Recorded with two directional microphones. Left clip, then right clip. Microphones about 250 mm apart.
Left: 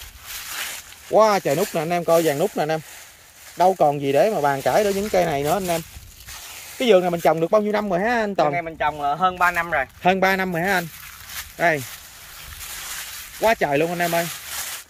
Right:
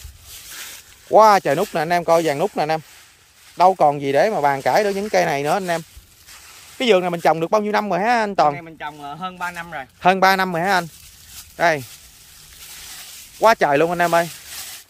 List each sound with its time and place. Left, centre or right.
1.1 s speech: centre
8.5 s speech: centre
10.0 s speech: centre
13.5 s speech: centre
14.1 s a sound: centre